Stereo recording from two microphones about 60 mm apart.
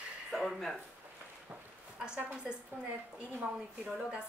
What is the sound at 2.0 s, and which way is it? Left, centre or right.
Speech, centre.